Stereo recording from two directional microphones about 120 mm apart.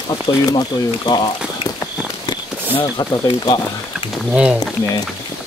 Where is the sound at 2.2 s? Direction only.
40° left (ahead or behind).